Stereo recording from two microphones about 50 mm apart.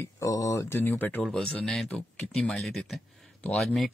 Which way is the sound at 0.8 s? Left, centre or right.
Left.